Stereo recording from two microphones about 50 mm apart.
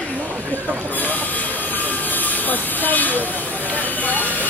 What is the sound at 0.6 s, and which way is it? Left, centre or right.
Vehicle, left.